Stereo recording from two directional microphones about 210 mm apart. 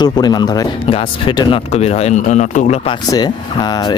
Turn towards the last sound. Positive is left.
turn(degrees=20)  # may be behind; listen again after turning